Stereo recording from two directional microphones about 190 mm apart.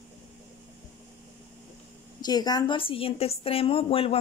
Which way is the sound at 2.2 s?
20° left (ahead or behind).